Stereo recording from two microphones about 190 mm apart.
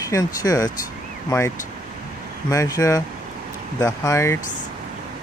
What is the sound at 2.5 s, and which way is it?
Speech, 15° left (ahead or behind).